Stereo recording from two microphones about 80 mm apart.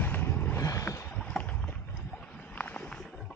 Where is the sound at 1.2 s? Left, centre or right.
Centre.